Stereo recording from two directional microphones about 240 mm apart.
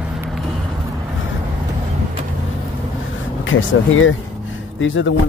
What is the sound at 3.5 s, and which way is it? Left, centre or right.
Speech, left.